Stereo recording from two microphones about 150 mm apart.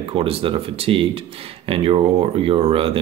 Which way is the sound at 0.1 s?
40° right (ahead or behind).